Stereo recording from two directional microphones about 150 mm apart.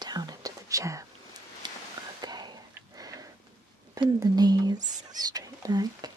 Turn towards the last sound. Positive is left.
turn(degrees=-25)  # may be behind; listen again after turning